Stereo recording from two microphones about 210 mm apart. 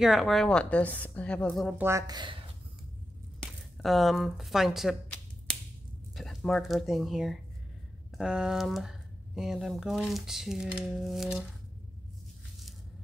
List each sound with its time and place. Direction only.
0.0 s speech: centre (ahead or behind)
1.8 s speech: 15° right (ahead or behind)
3.3 s a sound: centre (ahead or behind)
6.1 s speech: centre (ahead or behind)